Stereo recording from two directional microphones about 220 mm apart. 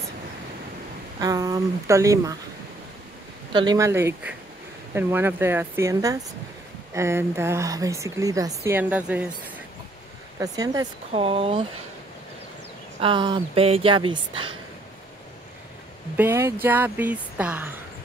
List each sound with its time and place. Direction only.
1.2 s speech: 15° right (ahead or behind)
3.5 s speech: 15° right (ahead or behind)
10.4 s speech: 15° right (ahead or behind)
13.0 s speech: 20° right (ahead or behind)
16.2 s speech: 10° right (ahead or behind)